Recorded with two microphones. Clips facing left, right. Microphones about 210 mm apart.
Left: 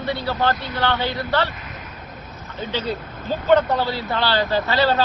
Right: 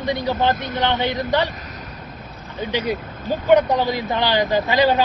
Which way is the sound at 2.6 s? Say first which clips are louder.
Right 3 dB; 15° right (ahead or behind).